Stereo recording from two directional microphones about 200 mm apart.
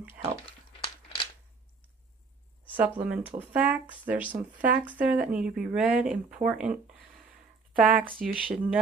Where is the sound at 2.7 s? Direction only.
5° right (ahead or behind).